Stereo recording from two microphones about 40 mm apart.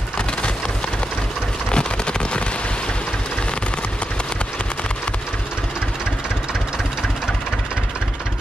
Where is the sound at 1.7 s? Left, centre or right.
Left.